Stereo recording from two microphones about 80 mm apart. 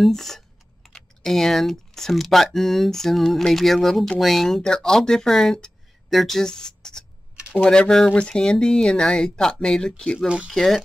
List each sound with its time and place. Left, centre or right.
0.0 s speech: centre
10.1 s speech: centre
10.5 s speech: centre